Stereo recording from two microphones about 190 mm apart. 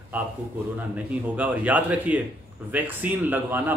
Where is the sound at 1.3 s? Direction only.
10° right (ahead or behind).